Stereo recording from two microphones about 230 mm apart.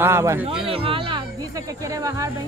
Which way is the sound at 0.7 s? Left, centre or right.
Right.